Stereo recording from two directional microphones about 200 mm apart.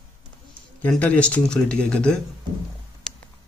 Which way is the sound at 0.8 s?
5° left (ahead or behind).